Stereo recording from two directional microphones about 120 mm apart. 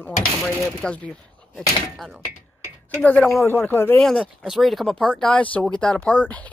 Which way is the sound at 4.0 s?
Centre (ahead or behind).